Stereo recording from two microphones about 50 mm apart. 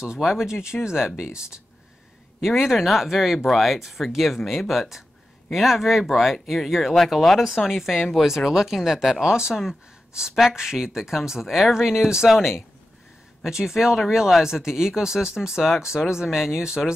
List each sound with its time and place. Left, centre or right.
0.0 s speech: centre
2.4 s speech: centre